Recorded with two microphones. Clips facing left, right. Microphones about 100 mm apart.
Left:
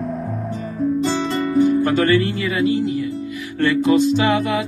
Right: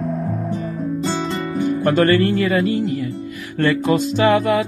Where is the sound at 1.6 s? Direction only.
45° right (ahead or behind).